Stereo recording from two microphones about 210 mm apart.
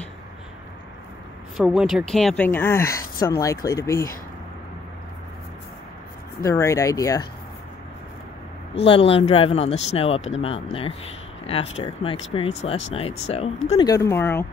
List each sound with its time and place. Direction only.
1.6 s a woman's voice: centre (ahead or behind); by 4.1 s 15° left (ahead or behind)
6.4 s speech: 15° left (ahead or behind)
8.7 s speech: 25° left (ahead or behind); by 14.4 s 10° left (ahead or behind)